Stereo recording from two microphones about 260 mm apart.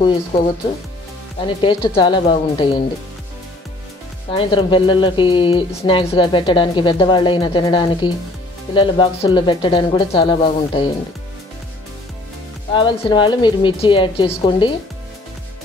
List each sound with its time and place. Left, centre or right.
1.4 s speech: centre
4.3 s speech: centre
12.7 s speech: centre